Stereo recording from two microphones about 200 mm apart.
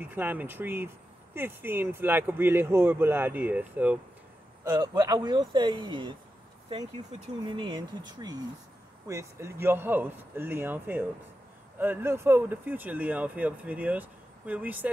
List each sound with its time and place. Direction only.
0.0 s speech: 10° right (ahead or behind)
7.4 s speech: 25° right (ahead or behind); by 14.9 s 10° right (ahead or behind)